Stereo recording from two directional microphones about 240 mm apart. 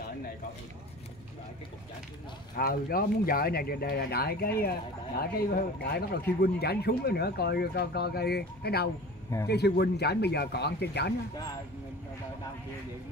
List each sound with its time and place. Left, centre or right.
2.6 s speech: left